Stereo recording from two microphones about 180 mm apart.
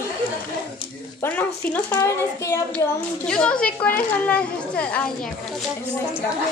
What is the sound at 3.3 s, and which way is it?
A woman's voice, 5° left (ahead or behind).